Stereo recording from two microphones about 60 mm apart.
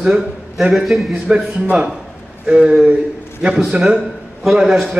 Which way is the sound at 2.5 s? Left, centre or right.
Centre.